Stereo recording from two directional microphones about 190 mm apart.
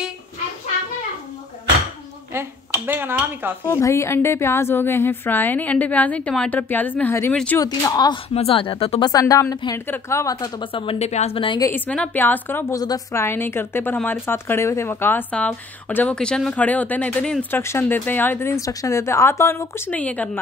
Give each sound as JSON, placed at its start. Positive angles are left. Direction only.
{"t": 2.3, "sound": "speech", "side_deg": -10}
{"t": 3.6, "sound": "a woman's voice", "side_deg": 15}
{"t": 7.6, "sound": "speech", "side_deg": 20}
{"t": 11.6, "sound": "a woman's voice", "side_deg": 10}